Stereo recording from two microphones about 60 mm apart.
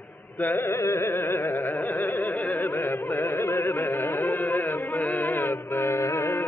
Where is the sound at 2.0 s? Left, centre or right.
Left.